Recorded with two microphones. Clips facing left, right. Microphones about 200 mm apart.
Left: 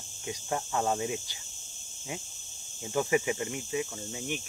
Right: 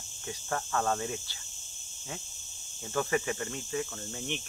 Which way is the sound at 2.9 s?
15° left (ahead or behind).